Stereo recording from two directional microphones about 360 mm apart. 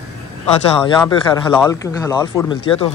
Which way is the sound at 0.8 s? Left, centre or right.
Centre.